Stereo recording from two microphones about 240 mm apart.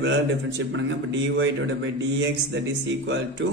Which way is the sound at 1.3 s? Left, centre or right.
Right.